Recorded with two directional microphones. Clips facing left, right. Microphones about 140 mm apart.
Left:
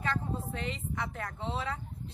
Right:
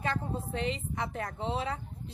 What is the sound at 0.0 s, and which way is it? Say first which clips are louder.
A woman's voice: right 1 dB; 20° right (ahead or behind).